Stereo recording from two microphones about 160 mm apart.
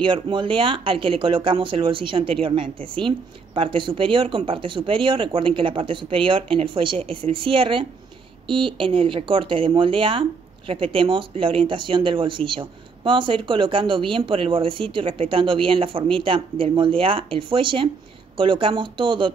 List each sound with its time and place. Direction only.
0.0 s speech: 30° right (ahead or behind)